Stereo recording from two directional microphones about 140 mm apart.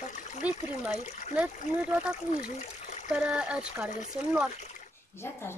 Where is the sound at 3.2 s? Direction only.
10° right (ahead or behind).